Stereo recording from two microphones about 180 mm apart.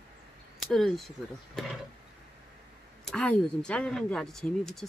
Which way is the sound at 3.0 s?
5° left (ahead or behind).